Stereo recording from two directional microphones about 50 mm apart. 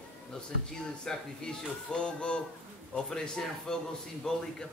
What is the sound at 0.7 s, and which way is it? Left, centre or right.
A man's voice, centre.